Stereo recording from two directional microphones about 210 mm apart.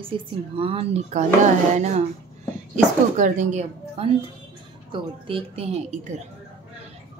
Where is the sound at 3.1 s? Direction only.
35° right (ahead or behind).